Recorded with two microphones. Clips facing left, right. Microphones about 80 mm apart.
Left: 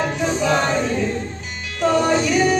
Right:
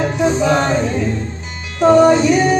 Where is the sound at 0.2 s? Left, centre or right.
Right.